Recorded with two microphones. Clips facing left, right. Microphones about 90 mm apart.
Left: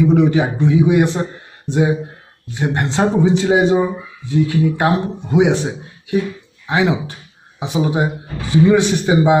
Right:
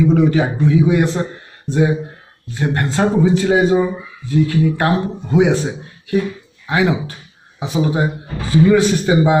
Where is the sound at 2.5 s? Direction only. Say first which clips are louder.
Even; 15° left (ahead or behind).